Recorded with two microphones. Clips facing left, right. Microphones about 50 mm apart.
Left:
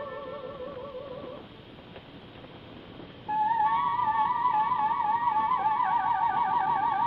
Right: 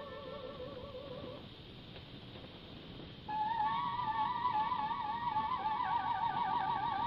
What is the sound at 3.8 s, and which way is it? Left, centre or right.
Music, left.